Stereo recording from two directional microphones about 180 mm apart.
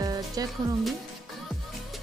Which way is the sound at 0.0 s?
20° right (ahead or behind).